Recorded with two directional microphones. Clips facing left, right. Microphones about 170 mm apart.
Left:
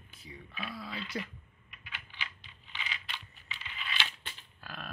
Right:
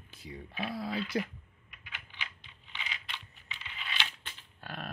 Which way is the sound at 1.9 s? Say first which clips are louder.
Left 1 dB; 20° right (ahead or behind).